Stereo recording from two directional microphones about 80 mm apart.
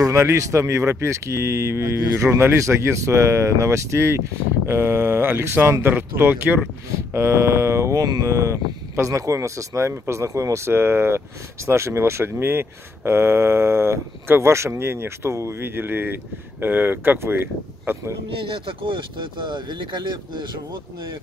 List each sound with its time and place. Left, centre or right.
0.0 s speech: right
7.2 s speech: right
18.7 s speech: right